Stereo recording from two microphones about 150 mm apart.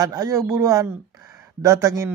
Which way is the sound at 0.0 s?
20° right (ahead or behind).